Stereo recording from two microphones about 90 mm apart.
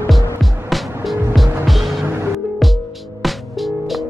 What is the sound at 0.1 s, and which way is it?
Music, centre (ahead or behind).